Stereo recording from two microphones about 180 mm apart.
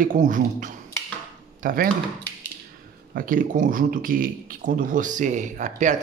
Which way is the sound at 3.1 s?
50° right (ahead or behind).